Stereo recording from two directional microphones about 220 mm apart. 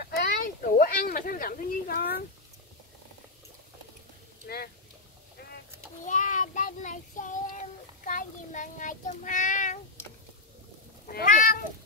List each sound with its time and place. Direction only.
0.0 s a sound: 40° left (ahead or behind)
6.0 s child singing: 35° left (ahead or behind)
11.1 s speech: 40° left (ahead or behind)